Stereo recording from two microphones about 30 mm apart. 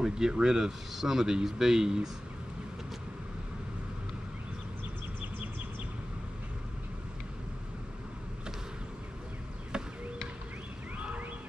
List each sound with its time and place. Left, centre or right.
0.0 s a man's voice: right